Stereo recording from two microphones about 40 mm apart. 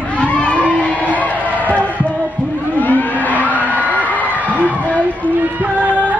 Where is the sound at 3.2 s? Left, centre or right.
Left.